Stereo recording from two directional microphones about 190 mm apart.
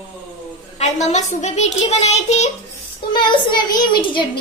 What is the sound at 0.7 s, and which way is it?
A child's voice, 35° left (ahead or behind).